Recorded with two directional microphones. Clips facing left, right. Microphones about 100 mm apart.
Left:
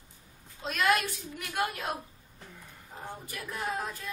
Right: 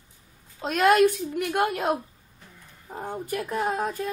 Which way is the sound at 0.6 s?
45° right (ahead or behind).